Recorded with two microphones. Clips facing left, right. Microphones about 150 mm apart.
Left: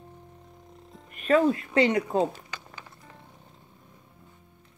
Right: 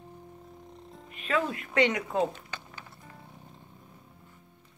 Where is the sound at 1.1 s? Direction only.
40° left (ahead or behind).